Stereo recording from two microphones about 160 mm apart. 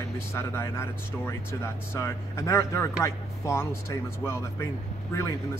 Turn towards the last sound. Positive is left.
turn(degrees=20)  # may be behind; listen again after turning